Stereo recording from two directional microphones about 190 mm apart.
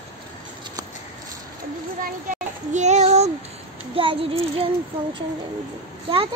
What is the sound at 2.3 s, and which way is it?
Child singing, 40° right (ahead or behind).